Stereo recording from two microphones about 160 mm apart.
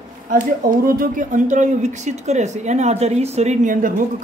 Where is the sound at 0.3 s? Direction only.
60° right (ahead or behind).